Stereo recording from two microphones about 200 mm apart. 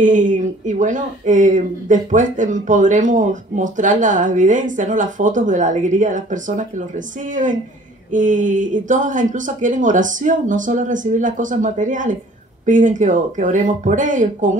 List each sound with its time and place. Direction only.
0.0 s speech: 40° right (ahead or behind)
8.1 s speech: 40° right (ahead or behind)